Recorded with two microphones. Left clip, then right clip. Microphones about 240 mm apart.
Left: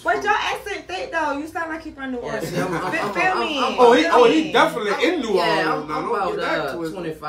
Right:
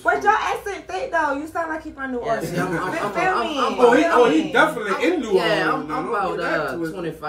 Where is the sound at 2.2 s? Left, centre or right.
Centre.